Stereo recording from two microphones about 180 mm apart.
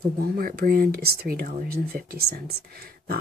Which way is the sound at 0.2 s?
55° right (ahead or behind).